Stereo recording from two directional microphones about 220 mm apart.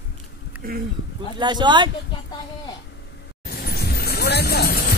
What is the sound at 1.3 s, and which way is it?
Speech, 20° right (ahead or behind).